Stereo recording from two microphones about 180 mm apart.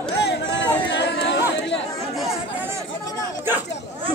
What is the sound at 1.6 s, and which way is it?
Chatter, 75° left (ahead or behind).